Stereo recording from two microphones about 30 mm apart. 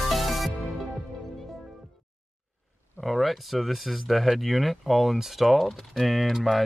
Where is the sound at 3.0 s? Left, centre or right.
Centre.